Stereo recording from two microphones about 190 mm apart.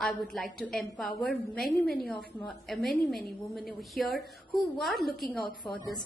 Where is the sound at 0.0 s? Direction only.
Centre (ahead or behind).